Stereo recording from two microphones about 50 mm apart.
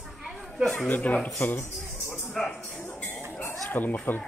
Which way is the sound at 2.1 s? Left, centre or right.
Centre.